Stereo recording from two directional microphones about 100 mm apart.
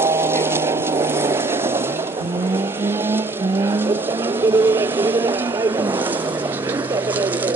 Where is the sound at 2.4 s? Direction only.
20° right (ahead or behind).